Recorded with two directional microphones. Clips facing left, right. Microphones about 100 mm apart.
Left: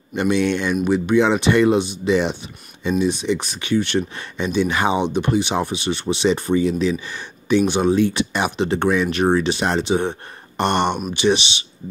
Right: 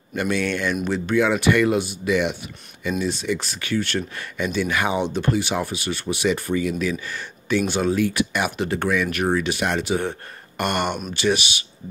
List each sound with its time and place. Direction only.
0.1 s speech: 20° left (ahead or behind)
3.0 s speech: 20° left (ahead or behind)